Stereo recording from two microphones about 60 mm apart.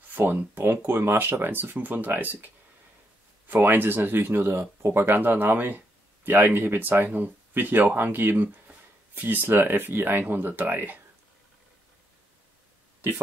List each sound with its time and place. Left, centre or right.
0.1 s speech: right
13.0 s speech: right